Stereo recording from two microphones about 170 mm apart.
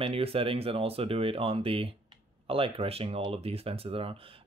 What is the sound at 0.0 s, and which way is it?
Speech, 35° right (ahead or behind).